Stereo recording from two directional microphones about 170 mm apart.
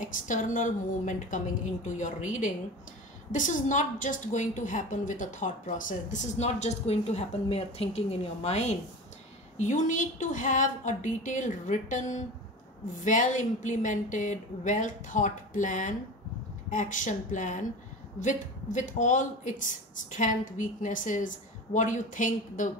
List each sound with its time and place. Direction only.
0.0 s a woman's voice: 50° left (ahead or behind)